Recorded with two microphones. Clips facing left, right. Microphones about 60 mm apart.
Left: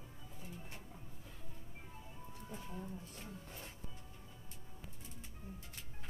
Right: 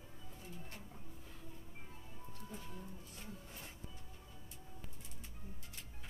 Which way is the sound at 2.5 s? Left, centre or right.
Left.